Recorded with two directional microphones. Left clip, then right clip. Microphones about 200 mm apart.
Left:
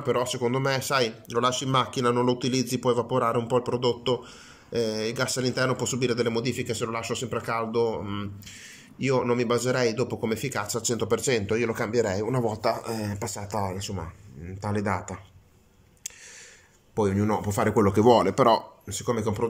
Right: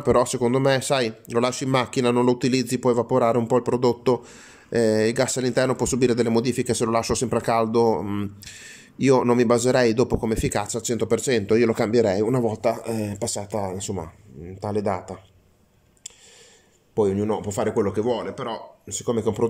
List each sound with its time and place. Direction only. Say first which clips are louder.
0.0 s speech: right 6 dB; 25° right (ahead or behind)
16.9 s speech: right 3 dB; 10° right (ahead or behind); by 18.6 s 20° left (ahead or behind)
18.9 s speech: right 4 dB; 5° right (ahead or behind)